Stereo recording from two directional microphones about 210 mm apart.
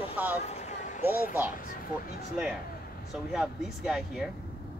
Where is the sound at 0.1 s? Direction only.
10° right (ahead or behind).